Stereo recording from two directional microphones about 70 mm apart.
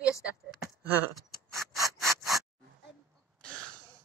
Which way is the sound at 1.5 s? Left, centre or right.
Centre.